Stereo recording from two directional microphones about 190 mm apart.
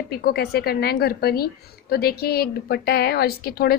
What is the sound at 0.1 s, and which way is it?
A woman's voice, 55° left (ahead or behind).